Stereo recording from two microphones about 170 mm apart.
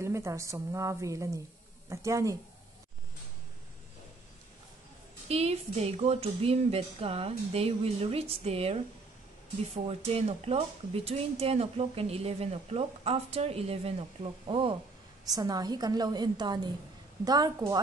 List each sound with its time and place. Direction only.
0.0 s a woman's voice: 15° right (ahead or behind)
5.3 s speech: 40° right (ahead or behind)
9.8 s a woman's voice: 35° right (ahead or behind); by 17.7 s 20° right (ahead or behind)